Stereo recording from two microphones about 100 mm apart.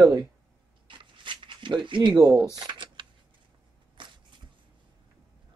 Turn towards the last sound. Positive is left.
turn(degrees=-55)  # may be behind; listen again after turning